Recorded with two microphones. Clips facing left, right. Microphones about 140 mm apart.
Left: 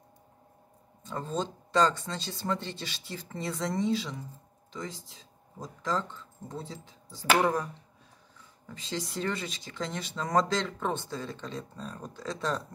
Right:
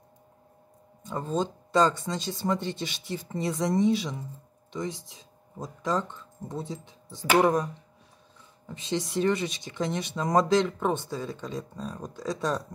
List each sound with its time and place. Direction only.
1.0 s speech: 15° right (ahead or behind)